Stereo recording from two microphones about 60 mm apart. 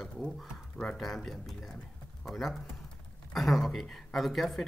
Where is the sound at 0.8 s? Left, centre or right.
Centre.